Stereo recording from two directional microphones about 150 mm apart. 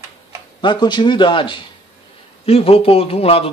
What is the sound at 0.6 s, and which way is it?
Speech, 30° left (ahead or behind).